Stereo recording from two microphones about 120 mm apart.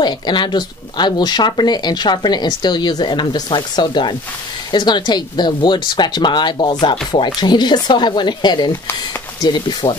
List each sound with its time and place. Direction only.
0.0 s speech: 40° left (ahead or behind)